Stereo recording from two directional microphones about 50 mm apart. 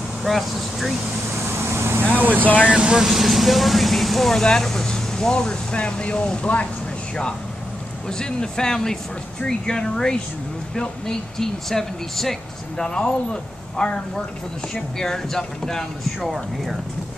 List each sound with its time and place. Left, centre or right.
0.2 s speech: centre
1.4 s vehicle: right
2.1 s speech: right
2.6 s speech: right
3.0 s speech: centre; by 6.7 s left
8.1 s speech: centre
16.2 s speech: centre